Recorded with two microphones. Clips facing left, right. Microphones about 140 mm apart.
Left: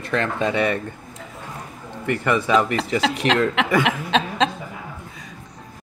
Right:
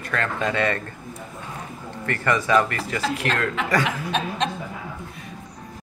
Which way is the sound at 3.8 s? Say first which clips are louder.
Left 4 dB; 90° left.